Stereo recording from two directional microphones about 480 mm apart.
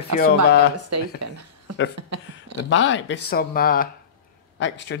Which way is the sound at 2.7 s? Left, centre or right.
Left.